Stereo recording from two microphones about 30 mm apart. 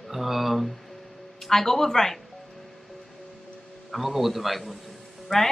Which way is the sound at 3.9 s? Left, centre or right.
Centre.